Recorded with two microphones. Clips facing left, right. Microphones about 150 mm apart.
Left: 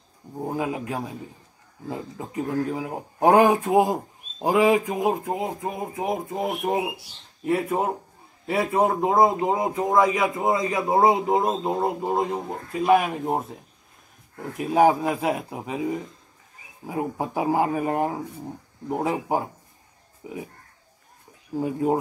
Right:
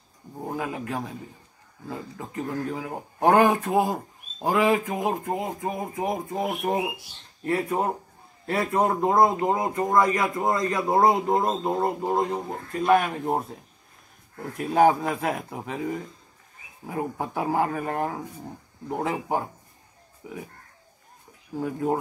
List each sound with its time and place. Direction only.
0.4 s speech: 10° left (ahead or behind)
21.5 s speech: 15° left (ahead or behind)